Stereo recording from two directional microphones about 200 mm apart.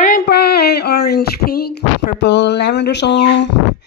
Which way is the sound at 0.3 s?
55° left (ahead or behind).